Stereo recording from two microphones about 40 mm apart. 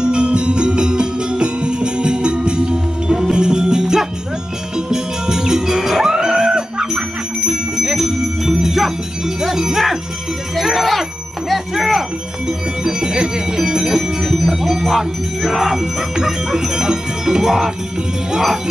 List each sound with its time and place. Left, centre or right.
0.0 s music: right; by 12.0 s centre
12.4 s music: centre